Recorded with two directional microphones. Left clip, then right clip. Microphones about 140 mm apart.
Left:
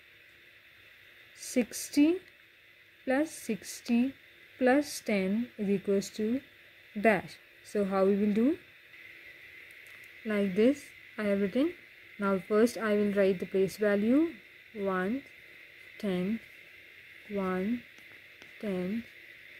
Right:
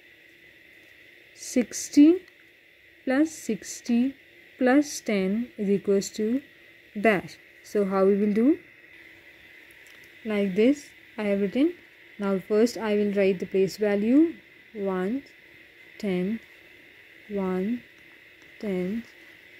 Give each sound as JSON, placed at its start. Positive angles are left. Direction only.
{"t": 1.4, "sound": "speech", "side_deg": -20}
{"t": 10.2, "sound": "speech", "side_deg": -20}
{"t": 17.5, "sound": "speech", "side_deg": -30}
{"t": 18.6, "sound": "speech", "side_deg": -15}